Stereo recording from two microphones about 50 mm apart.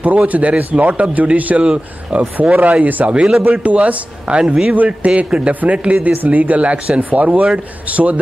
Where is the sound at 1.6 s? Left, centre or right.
Centre.